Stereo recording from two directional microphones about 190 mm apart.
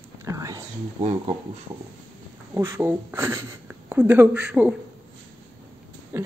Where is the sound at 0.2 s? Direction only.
15° right (ahead or behind).